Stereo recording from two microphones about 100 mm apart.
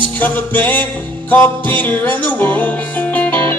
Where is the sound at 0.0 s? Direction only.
15° left (ahead or behind).